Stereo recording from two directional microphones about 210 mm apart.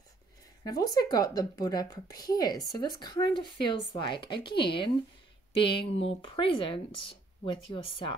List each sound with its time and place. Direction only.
0.7 s a woman's voice: 20° left (ahead or behind)